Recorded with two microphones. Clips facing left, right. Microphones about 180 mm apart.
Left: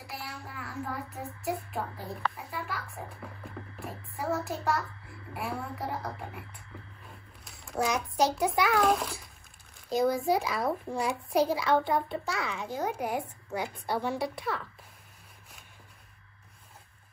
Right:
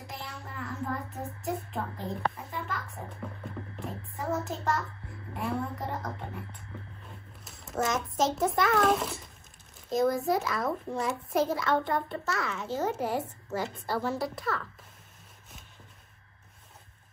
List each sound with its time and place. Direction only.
0.0 s music: centre (ahead or behind)
1.5 s a sound: centre (ahead or behind)
2.3 s music: centre (ahead or behind)
4.6 s child singing: centre (ahead or behind)
5.3 s a sound: centre (ahead or behind)
9.8 s a child's voice: centre (ahead or behind)
12.6 s a child's voice: 15° left (ahead or behind)
13.5 s a child's voice: centre (ahead or behind)